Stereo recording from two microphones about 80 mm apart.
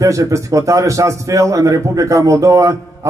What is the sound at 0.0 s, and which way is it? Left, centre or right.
Speech, right.